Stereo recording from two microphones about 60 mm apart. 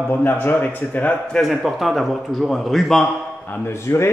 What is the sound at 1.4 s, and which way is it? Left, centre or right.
A man's voice, centre.